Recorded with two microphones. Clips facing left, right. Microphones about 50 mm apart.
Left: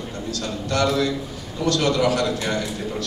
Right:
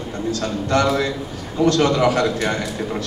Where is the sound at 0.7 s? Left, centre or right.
Right.